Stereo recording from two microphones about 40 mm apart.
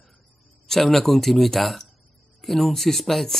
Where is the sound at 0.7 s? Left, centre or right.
Centre.